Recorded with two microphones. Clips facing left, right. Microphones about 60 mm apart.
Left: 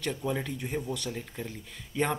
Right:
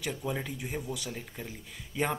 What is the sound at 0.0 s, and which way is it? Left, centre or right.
Speech, centre.